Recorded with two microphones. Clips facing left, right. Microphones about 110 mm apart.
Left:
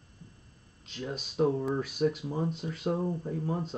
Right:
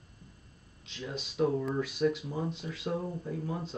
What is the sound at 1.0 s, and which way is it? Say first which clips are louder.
Speech: left 2 dB; 40° left (ahead or behind).